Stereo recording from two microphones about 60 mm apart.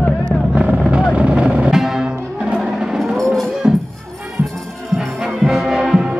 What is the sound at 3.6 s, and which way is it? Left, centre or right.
Music, centre.